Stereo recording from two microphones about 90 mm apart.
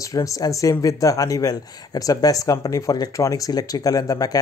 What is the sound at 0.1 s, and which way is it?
Speech, 40° left (ahead or behind).